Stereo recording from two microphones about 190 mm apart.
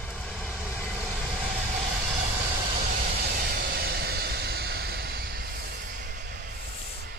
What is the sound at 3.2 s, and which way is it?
Vehicle, 55° right (ahead or behind).